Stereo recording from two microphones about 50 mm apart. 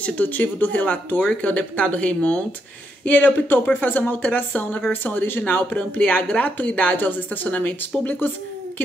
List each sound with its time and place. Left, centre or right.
0.0 s speech: left
3.1 s speech: left